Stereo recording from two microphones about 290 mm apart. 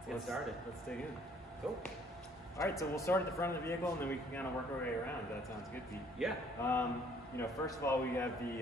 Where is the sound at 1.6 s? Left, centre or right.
Centre.